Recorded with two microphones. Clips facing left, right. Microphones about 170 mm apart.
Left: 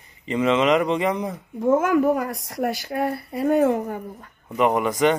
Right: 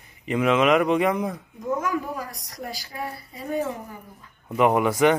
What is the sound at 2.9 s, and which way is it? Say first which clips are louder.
Speech: left 9 dB; 60° left (ahead or behind).